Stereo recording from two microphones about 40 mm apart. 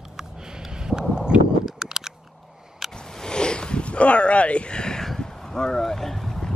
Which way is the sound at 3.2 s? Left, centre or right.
Left.